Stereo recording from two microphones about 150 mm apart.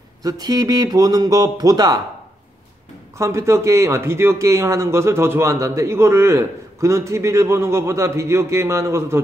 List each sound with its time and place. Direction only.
0.2 s speech: 25° right (ahead or behind)
3.2 s speech: 20° right (ahead or behind)